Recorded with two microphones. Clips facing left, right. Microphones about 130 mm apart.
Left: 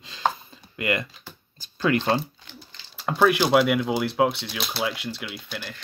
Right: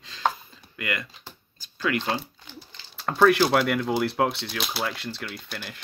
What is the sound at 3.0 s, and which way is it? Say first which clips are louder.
Speech: right 1 dB; 10° left (ahead or behind).